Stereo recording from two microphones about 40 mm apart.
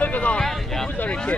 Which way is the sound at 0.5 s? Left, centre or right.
Centre.